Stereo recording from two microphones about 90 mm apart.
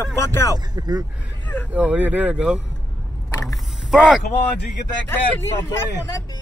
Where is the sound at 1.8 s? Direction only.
15° right (ahead or behind).